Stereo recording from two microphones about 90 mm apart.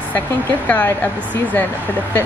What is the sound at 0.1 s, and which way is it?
A woman's voice, 20° left (ahead or behind).